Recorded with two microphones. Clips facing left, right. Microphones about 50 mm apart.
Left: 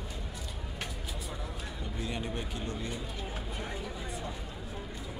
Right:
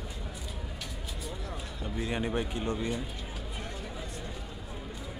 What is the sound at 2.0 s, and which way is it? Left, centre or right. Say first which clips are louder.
Speech: right 6 dB; right.